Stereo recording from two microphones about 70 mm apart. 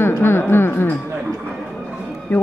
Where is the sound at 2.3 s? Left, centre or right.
Left.